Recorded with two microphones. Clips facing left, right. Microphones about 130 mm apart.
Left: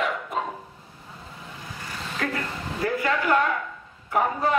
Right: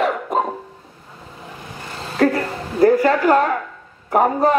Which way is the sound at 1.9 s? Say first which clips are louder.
Right 12 dB; 35° right (ahead or behind).